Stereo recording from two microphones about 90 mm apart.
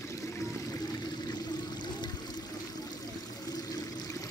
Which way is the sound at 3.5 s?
45° left (ahead or behind).